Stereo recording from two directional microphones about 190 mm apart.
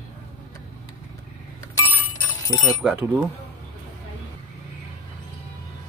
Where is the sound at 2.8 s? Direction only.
10° right (ahead or behind).